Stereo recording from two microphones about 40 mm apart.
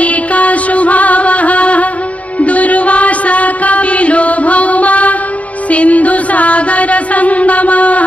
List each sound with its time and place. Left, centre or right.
0.0 s music: left